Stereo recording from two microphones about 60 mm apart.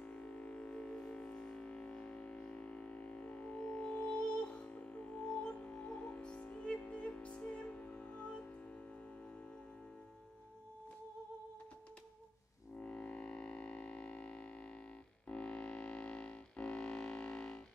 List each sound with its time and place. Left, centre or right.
0.0 s music: centre
12.7 s music: centre